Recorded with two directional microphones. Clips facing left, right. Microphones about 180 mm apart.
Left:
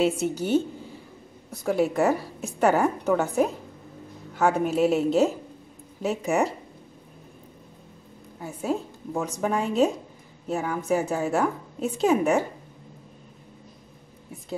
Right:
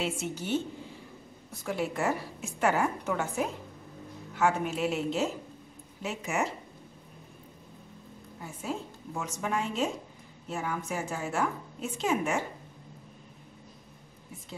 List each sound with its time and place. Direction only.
0.0 s a woman's voice: 35° left (ahead or behind)
8.6 s a woman's voice: 35° left (ahead or behind)